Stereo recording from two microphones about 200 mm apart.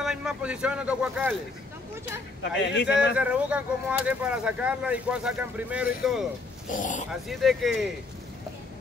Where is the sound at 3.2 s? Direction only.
5° right (ahead or behind).